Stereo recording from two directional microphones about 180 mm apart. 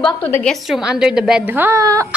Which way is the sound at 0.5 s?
Centre (ahead or behind).